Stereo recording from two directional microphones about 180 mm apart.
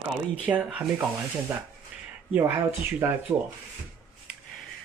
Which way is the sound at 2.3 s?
10° right (ahead or behind).